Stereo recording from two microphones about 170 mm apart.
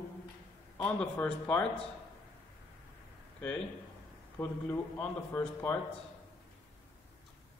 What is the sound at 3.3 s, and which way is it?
Speech, 5° left (ahead or behind).